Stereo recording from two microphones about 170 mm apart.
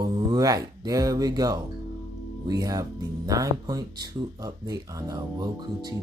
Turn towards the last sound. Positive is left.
turn(degrees=-20)  # may be behind; listen again after turning